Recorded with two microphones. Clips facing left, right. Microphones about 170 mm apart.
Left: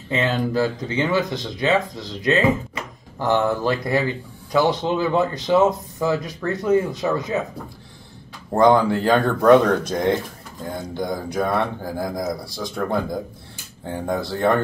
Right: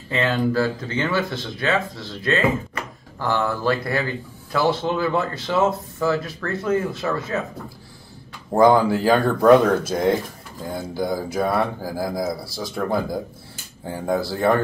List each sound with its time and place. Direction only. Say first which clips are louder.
0.1 s speech: even; 20° left (ahead or behind)
8.5 s speech: even; 5° right (ahead or behind)